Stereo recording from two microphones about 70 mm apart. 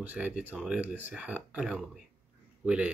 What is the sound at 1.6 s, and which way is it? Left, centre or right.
Speech, centre.